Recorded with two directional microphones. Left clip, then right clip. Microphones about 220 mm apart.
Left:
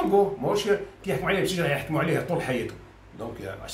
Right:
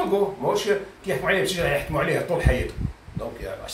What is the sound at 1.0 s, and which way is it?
Speech, 10° left (ahead or behind).